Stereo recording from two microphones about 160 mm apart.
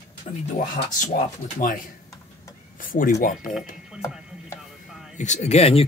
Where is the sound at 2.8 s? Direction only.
60° left (ahead or behind).